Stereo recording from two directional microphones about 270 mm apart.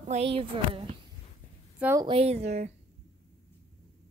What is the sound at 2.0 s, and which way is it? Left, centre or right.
Speech, right.